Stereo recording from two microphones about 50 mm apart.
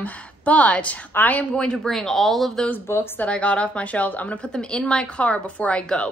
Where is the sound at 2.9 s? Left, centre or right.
Left.